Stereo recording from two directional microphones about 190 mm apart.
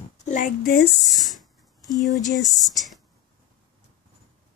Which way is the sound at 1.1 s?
Centre (ahead or behind).